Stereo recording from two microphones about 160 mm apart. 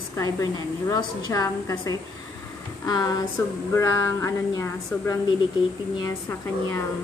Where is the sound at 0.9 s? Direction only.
20° left (ahead or behind).